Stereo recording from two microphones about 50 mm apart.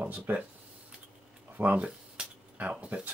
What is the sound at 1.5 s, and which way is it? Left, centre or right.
Speech, right.